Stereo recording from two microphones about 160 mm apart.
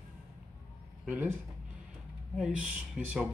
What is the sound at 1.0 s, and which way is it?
Speech, 10° right (ahead or behind).